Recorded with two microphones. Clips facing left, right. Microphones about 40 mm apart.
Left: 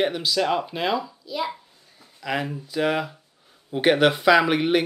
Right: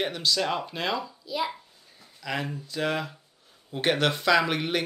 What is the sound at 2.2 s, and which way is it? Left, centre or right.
Speech, centre.